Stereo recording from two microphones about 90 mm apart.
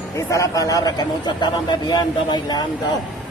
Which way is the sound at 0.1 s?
35° left (ahead or behind).